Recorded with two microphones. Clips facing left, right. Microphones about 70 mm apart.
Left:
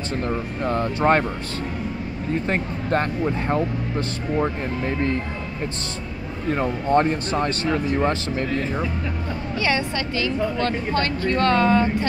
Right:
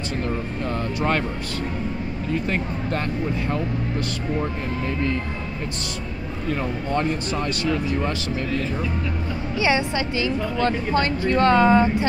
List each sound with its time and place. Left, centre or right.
0.2 s speech: left
2.3 s speech: left
6.5 s speech: left
9.6 s speech: centre